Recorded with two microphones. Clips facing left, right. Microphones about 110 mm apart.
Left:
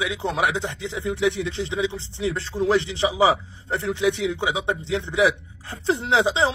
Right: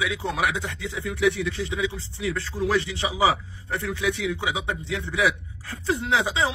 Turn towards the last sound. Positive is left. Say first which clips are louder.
# left 4 dB
turn(degrees=25)  # may be behind; listen again after turning